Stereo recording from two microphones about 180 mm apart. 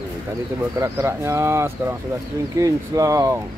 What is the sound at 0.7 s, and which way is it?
Speech, 15° right (ahead or behind).